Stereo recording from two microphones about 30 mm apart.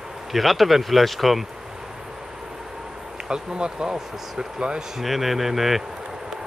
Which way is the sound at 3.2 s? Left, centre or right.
Right.